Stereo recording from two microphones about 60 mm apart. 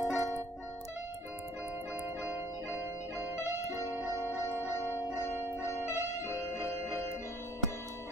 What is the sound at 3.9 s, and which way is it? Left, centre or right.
Music, right.